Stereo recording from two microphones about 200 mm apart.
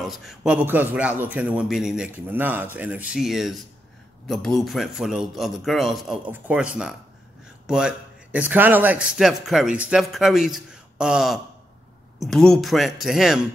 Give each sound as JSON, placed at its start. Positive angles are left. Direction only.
{"t": 0.0, "sound": "a man's voice", "side_deg": 0}